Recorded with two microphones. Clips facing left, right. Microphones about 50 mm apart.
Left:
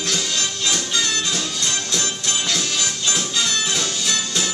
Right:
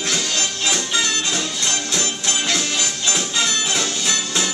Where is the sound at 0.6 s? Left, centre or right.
Centre.